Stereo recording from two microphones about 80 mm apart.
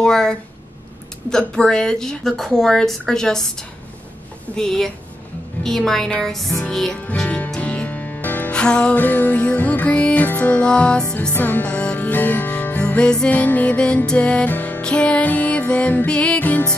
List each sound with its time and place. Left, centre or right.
0.0 s music: centre
1.3 s a woman's voice: centre
7.2 s music: centre
8.5 s music: centre
8.9 s music: left
11.3 s music: left
13.3 s music: left